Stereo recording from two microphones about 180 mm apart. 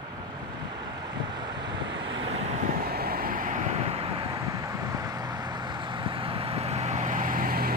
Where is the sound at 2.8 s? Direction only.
55° right (ahead or behind); by 4.0 s 40° right (ahead or behind).